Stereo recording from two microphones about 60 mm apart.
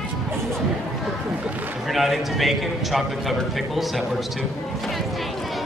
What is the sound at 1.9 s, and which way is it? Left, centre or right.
A man's voice, centre.